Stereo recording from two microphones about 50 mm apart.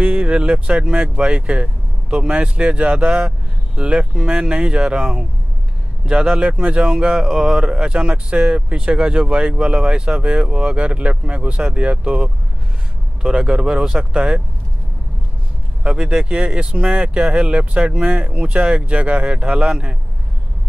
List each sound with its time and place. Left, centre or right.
0.0 s a sound: right
0.4 s speech: right
6.2 s speech: right
15.8 s speech: centre